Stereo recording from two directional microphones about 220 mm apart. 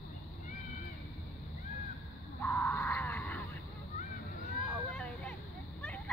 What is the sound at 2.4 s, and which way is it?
Screaming, 10° left (ahead or behind).